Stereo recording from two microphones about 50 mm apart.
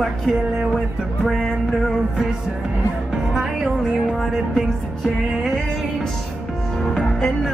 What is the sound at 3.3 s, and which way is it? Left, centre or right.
Speech, centre.